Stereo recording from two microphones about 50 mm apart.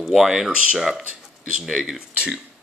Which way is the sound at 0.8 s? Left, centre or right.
Centre.